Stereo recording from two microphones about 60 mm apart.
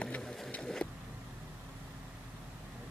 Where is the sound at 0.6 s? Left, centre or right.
Centre.